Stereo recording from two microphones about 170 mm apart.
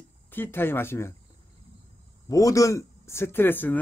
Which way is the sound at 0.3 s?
10° left (ahead or behind).